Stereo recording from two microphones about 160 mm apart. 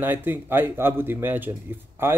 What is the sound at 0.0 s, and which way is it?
Speech, 10° right (ahead or behind).